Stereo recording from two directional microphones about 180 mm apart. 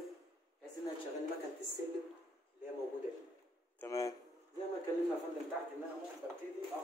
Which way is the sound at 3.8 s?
15° left (ahead or behind).